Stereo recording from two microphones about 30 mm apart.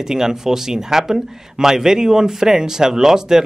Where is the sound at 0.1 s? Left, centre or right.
Centre.